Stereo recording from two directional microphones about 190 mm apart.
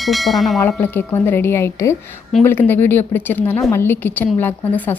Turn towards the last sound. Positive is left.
turn(degrees=10)  # may be behind; listen again after turning